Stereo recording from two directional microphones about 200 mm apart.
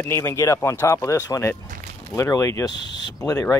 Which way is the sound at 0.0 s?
15° left (ahead or behind).